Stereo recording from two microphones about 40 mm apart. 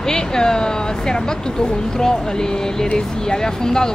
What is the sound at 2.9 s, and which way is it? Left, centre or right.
Speech, centre.